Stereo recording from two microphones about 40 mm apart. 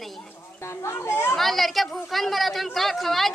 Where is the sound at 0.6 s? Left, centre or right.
Left.